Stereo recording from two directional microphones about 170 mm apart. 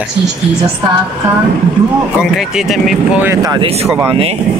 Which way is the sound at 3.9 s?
10° right (ahead or behind).